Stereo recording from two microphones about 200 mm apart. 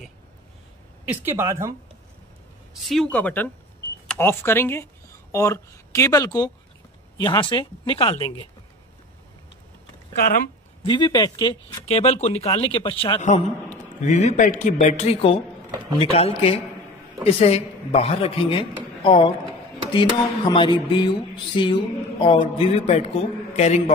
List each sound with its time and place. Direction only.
1.0 s speech: 10° right (ahead or behind)
2.8 s speech: centre (ahead or behind); by 8.5 s 25° left (ahead or behind)
10.2 s speech: 45° left (ahead or behind)
10.8 s a man's voice: 25° left (ahead or behind)
15.7 s a sound: 20° right (ahead or behind)
16.0 s a man's voice: 30° left (ahead or behind)